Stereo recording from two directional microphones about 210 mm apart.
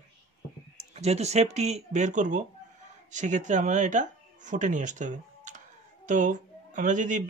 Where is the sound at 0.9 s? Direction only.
30° right (ahead or behind).